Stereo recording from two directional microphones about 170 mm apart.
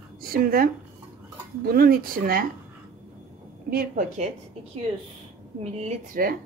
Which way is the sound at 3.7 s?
60° right (ahead or behind).